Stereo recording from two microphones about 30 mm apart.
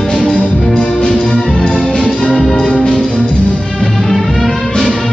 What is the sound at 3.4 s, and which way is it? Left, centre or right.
Music, left.